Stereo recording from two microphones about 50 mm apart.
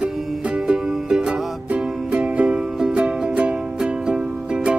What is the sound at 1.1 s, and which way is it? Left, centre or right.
Music, centre.